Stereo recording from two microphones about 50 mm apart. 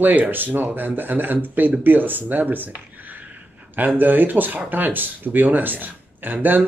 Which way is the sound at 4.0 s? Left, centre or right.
Right.